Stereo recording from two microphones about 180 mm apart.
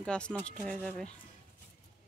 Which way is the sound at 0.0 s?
5° left (ahead or behind).